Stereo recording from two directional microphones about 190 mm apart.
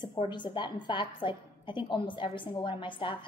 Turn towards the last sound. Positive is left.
turn(degrees=25)  # may be behind; listen again after turning